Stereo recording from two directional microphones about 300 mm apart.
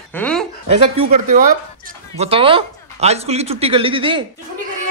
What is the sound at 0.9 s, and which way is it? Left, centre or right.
A woman's voice, right.